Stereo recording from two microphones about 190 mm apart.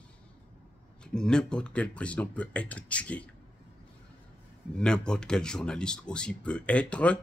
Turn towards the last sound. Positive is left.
turn(degrees=5)  # may be behind; listen again after turning